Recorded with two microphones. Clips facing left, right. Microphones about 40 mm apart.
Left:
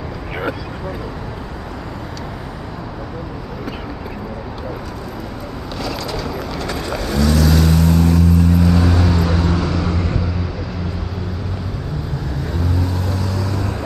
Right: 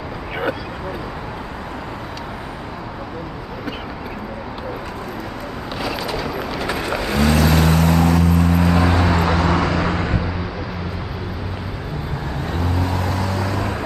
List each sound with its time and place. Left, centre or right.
5.8 s vehicle: centre
12.5 s vehicle: right